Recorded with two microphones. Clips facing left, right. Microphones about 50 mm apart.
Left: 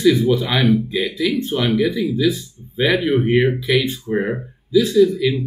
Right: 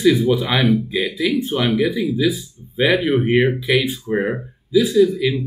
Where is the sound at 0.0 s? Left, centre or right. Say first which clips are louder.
Even; centre.